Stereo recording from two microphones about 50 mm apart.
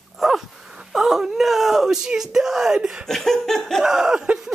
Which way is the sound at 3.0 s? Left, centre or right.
Centre.